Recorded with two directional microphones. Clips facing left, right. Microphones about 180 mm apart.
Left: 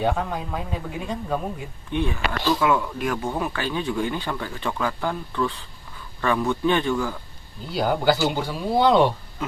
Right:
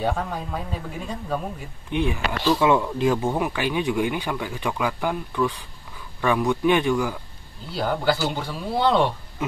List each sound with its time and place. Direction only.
0.0 s speech: centre (ahead or behind)
1.9 s speech: 15° right (ahead or behind)
2.6 s speech: 25° right (ahead or behind)
7.7 s speech: 5° left (ahead or behind)